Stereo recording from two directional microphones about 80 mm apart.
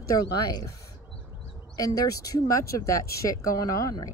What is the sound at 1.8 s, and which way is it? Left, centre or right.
Speech, left.